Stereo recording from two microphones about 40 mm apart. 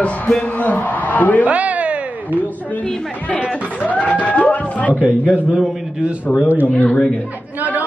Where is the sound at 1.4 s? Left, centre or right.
Right.